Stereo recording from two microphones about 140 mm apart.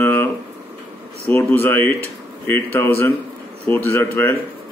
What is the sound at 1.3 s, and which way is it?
Speech, 15° left (ahead or behind).